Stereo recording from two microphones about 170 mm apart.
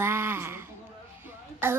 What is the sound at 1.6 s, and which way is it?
Speech, 10° right (ahead or behind).